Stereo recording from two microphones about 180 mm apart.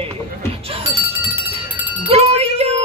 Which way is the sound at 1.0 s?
15° right (ahead or behind).